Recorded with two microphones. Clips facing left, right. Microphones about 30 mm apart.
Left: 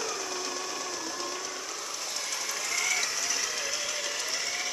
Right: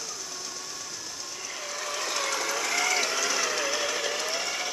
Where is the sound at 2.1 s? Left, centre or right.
Right.